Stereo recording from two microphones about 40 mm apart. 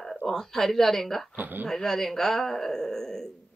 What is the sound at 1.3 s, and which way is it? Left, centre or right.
Speech, right.